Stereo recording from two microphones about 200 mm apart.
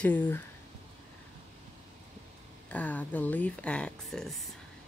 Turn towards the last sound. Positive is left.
turn(degrees=0)  # may be behind; listen again after turning